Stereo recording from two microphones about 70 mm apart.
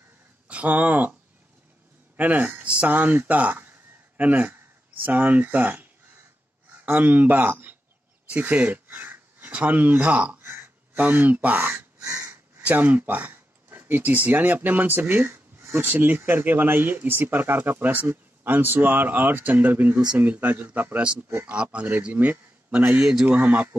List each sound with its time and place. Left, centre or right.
0.5 s speech: right
2.1 s speech: right
12.0 s a sound: right
12.6 s a man's voice: right